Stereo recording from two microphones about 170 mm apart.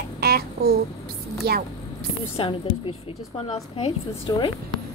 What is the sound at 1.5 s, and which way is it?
Child singing, 70° right (ahead or behind).